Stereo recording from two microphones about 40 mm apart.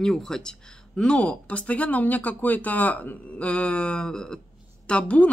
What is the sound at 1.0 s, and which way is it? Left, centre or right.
Speech, left.